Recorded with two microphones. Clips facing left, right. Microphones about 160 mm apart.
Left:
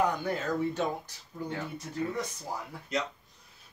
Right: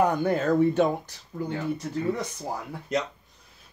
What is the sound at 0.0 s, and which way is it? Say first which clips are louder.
Speech: right 6 dB; 55° right (ahead or behind).